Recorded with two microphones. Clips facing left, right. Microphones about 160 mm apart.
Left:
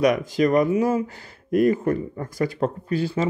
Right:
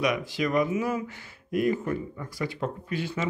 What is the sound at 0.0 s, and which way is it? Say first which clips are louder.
Speech: left 8 dB; 45° left (ahead or behind).